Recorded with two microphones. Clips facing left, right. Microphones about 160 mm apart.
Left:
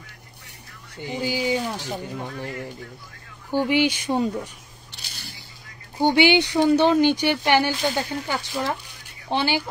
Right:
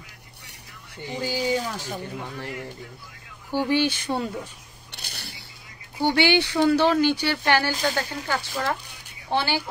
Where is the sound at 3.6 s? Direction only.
15° left (ahead or behind).